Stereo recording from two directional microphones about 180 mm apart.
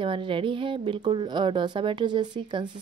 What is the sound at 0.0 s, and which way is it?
A woman's voice, 30° right (ahead or behind).